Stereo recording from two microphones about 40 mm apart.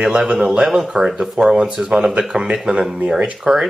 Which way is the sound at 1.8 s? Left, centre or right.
Right.